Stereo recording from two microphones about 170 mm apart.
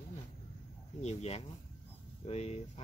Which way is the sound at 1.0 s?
40° left (ahead or behind).